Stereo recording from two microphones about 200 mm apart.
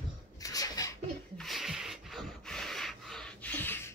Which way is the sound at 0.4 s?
15° left (ahead or behind).